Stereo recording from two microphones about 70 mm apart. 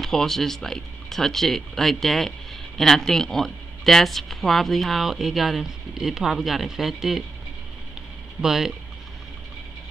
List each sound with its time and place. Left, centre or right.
0.0 s speech: centre
8.4 s speech: centre